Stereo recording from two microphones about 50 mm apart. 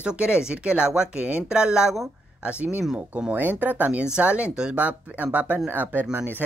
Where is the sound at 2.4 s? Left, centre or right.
Right.